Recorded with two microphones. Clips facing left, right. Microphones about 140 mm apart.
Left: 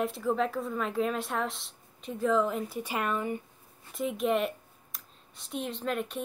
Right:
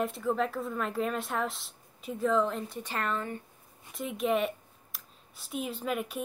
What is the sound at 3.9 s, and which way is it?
Speech, centre (ahead or behind).